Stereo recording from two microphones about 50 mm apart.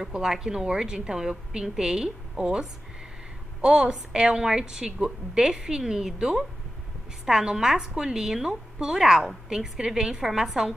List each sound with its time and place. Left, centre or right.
0.1 s a woman's voice: centre
3.6 s a woman's voice: centre